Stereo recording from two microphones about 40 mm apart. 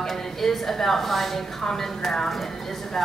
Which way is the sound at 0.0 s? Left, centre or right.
Centre.